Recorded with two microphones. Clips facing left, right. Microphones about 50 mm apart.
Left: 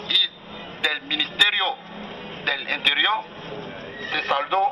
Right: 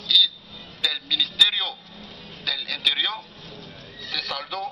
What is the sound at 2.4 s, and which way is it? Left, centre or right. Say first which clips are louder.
Speech: left 4 dB; left.